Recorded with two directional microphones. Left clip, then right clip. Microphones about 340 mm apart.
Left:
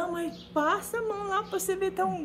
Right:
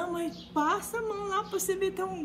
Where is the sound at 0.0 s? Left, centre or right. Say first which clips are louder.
Left 1 dB; centre.